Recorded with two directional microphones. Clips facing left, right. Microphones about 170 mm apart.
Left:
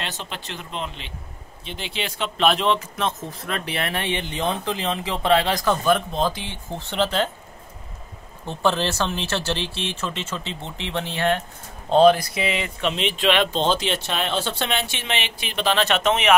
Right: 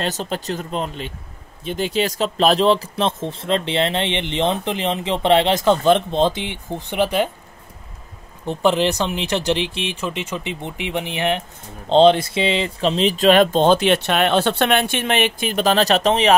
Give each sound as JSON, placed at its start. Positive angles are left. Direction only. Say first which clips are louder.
{"t": 0.0, "sound": "speech", "louder": "right 9 dB", "side_deg": -40}
{"t": 8.5, "sound": "speech", "louder": "right 5 dB", "side_deg": -15}